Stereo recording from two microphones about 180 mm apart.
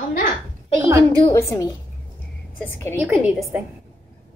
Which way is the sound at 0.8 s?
15° right (ahead or behind).